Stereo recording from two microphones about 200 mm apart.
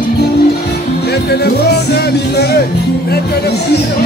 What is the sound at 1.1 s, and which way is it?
Speech, 55° left (ahead or behind).